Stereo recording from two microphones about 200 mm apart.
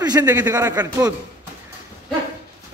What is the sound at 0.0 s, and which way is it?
Speech, 15° right (ahead or behind).